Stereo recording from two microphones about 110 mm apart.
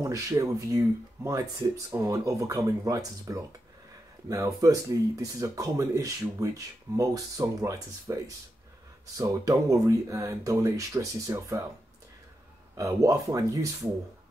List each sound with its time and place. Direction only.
0.0 s speech: 30° right (ahead or behind)
4.6 s speech: 30° right (ahead or behind)
12.7 s speech: 30° right (ahead or behind)